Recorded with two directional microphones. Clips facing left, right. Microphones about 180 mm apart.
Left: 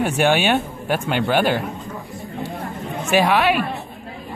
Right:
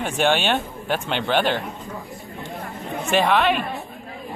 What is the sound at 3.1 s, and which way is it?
Speech, 10° left (ahead or behind).